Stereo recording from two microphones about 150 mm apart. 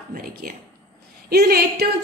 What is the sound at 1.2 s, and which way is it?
Speech, 90° right.